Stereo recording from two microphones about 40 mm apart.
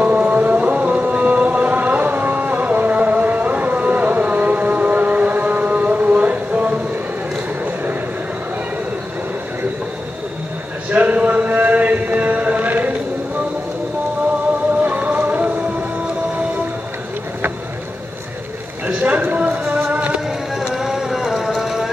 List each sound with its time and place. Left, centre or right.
0.0 s music: right
10.9 s a sound: right
14.9 s music: right
18.9 s clip-clop: right
19.2 s a sound: right
19.9 s music: right
20.2 s music: centre